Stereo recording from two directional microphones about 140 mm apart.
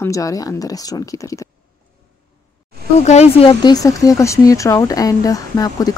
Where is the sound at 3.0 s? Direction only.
50° left (ahead or behind).